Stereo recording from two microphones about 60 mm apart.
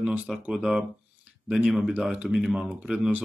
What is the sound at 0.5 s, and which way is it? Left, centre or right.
Speech, centre.